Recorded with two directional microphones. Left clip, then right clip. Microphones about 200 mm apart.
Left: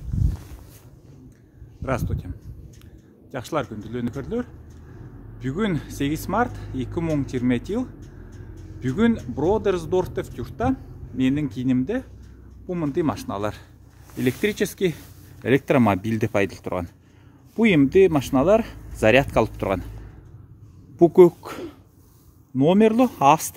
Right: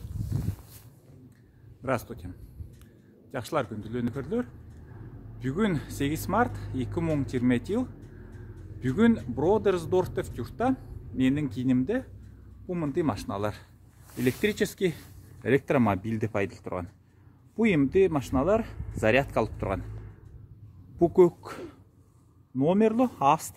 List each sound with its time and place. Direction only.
1.8 s speech: 5° right (ahead or behind)
12.6 s speech: 10° left (ahead or behind)
15.4 s speech: 35° left (ahead or behind)
21.0 s speech: 35° left (ahead or behind)